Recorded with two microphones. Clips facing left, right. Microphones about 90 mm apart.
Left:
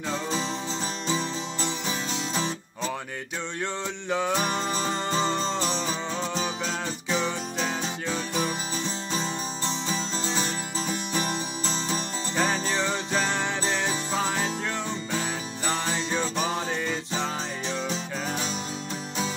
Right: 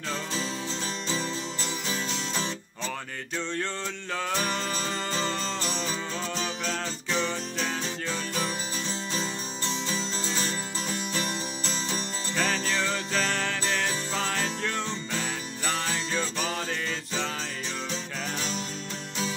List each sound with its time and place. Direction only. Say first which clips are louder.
0.1 s music: left 3 dB; 20° left (ahead or behind)
4.1 s music: left 4 dB; 15° left (ahead or behind)
6.3 s music: left 2 dB; 10° left (ahead or behind)
10.3 s music: left 2 dB; 10° left (ahead or behind)